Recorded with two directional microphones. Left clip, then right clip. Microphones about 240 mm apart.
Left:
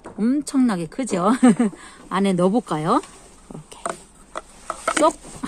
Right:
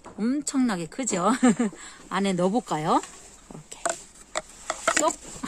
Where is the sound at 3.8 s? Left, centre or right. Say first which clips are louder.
Even; right.